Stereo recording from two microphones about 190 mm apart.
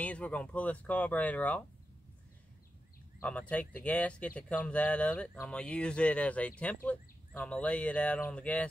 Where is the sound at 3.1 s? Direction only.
5° left (ahead or behind).